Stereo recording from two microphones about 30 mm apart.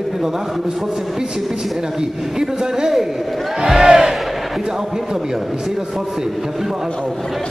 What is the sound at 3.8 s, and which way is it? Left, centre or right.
Battle cry, right.